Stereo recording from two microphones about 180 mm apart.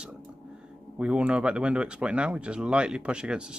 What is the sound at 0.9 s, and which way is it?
Speech, 5° right (ahead or behind).